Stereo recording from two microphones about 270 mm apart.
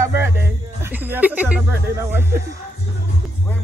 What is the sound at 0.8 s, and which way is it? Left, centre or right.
Speech, centre.